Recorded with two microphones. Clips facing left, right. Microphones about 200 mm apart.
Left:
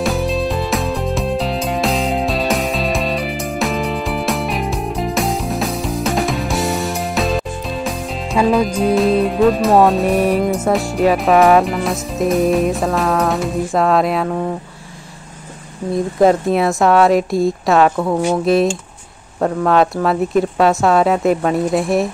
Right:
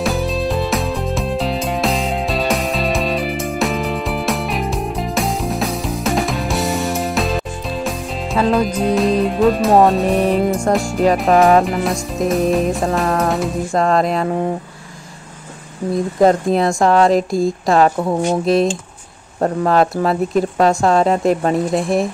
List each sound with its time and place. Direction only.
0.0 s music: centre (ahead or behind)
8.5 s speech: centre (ahead or behind)
15.9 s speech: centre (ahead or behind)
17.9 s speech: 20° right (ahead or behind)
18.4 s speech: centre (ahead or behind)